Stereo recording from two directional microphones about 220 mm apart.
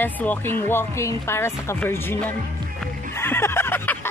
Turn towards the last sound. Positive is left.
turn(degrees=10)  # may be behind; listen again after turning